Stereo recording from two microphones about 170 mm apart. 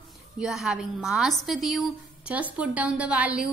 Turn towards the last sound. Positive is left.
turn(degrees=-10)  # may be behind; listen again after turning